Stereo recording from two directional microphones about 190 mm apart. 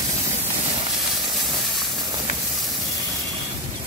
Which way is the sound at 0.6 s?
30° right (ahead or behind).